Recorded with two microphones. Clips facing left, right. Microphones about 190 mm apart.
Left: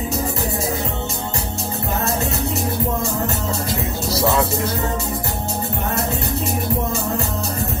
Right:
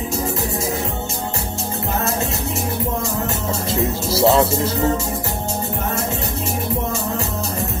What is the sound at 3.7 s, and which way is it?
Speech, 25° right (ahead or behind).